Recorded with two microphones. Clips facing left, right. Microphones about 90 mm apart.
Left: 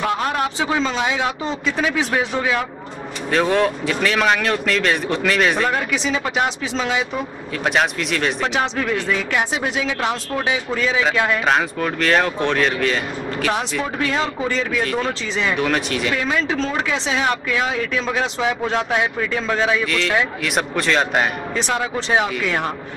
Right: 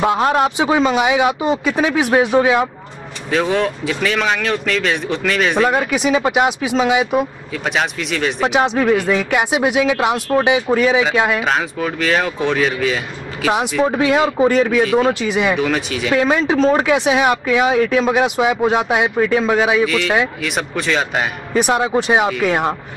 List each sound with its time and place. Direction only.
0.2 s speech: 25° right (ahead or behind)
3.3 s speech: centre (ahead or behind)
5.8 s speech: 10° right (ahead or behind)
7.6 s speech: centre (ahead or behind)
8.5 s speech: 15° right (ahead or behind)
11.3 s speech: centre (ahead or behind)
15.5 s speech: centre (ahead or behind)
16.2 s speech: 20° right (ahead or behind); by 21.3 s centre (ahead or behind)
21.5 s speech: 15° right (ahead or behind)